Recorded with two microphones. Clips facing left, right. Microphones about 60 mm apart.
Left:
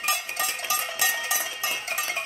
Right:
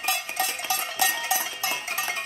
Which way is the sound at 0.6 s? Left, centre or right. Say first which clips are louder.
Even; centre.